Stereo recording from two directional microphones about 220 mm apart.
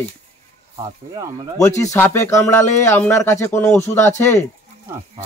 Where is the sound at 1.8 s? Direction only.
15° left (ahead or behind).